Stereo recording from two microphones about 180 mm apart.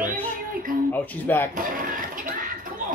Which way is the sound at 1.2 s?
10° left (ahead or behind).